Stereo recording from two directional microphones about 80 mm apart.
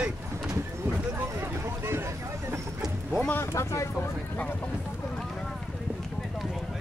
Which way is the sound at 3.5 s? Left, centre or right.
Left.